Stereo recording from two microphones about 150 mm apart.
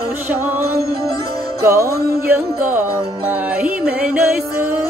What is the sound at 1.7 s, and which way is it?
Music, 15° right (ahead or behind).